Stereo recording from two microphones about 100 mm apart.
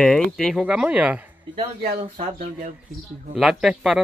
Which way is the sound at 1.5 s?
70° right (ahead or behind).